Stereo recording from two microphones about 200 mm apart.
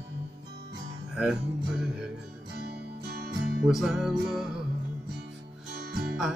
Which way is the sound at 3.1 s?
50° right (ahead or behind).